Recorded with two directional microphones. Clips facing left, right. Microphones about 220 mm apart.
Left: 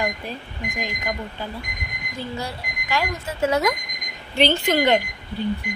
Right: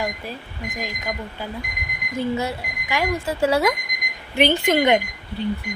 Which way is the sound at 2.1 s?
20° right (ahead or behind).